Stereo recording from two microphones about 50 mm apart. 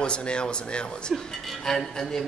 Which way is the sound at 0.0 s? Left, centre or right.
Left.